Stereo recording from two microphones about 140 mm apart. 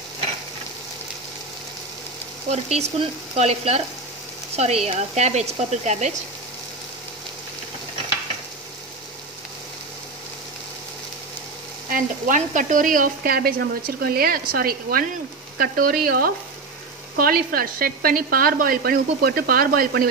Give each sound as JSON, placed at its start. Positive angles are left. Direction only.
{"t": 2.5, "sound": "speech", "side_deg": -50}
{"t": 11.9, "sound": "speech", "side_deg": -65}